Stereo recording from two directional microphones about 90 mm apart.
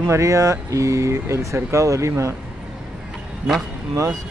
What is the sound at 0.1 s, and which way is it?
Speech, 35° right (ahead or behind).